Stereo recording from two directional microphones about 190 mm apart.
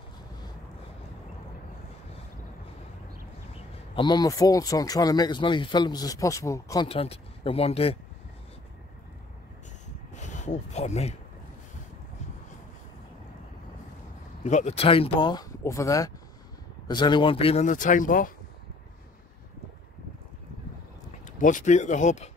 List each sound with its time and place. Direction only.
3.9 s speech: 25° left (ahead or behind)
6.9 s speech: 30° left (ahead or behind)
10.1 s speech: 40° left (ahead or behind)
14.4 s speech: 40° left (ahead or behind)
21.3 s speech: 45° left (ahead or behind)